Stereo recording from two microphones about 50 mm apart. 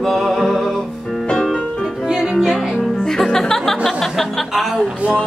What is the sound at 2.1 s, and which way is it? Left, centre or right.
Music, centre.